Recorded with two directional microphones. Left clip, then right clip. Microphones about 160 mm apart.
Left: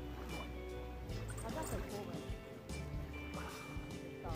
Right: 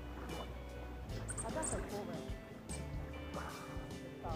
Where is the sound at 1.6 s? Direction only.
35° left (ahead or behind).